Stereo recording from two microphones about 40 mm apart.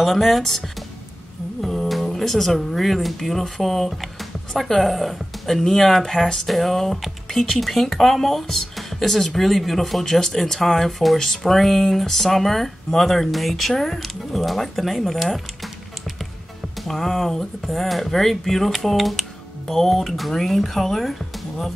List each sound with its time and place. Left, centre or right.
0.0 s speech: centre
1.6 s a sound: centre
1.9 s speech: centre
16.8 s speech: centre